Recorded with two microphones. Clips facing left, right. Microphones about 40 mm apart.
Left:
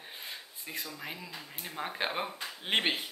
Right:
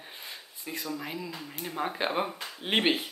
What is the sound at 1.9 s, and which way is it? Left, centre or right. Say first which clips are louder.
Speech: right 2 dB; centre.